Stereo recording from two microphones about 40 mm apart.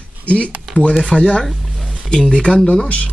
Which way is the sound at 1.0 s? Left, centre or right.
Left.